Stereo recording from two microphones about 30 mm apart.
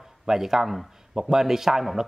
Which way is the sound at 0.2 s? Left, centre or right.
Centre.